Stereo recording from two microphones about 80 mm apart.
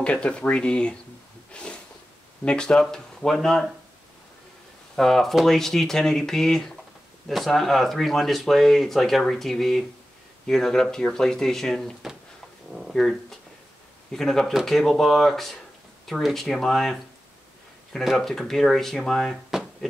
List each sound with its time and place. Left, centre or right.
0.0 s speech: centre
1.5 s snort: centre
2.4 s speech: centre
4.9 s speech: centre
12.0 s a sound: centre
12.7 s speech: centre
14.1 s speech: centre
19.5 s a sound: centre